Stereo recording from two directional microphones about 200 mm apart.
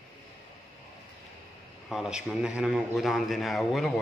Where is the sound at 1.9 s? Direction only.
5° right (ahead or behind).